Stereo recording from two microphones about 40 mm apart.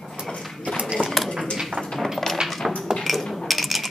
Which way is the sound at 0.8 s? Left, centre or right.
Right.